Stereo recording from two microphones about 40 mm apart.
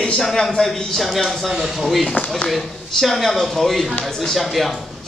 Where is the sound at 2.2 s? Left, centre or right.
Left.